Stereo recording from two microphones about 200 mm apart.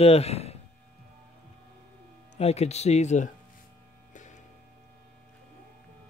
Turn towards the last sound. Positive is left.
turn(degrees=40)  # may be behind; listen again after turning